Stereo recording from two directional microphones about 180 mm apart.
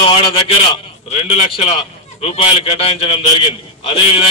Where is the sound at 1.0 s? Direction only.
35° left (ahead or behind).